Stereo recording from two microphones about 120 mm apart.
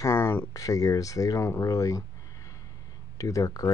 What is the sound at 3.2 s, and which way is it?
Speech, 30° left (ahead or behind).